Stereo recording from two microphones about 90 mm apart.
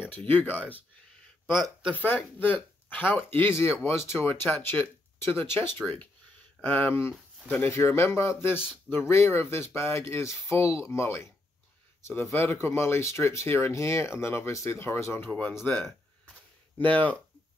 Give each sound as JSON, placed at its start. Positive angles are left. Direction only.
{"t": 0.1, "sound": "speech", "side_deg": 20}
{"t": 2.0, "sound": "speech", "side_deg": 20}
{"t": 8.5, "sound": "speech", "side_deg": -10}
{"t": 9.0, "sound": "speech", "side_deg": 30}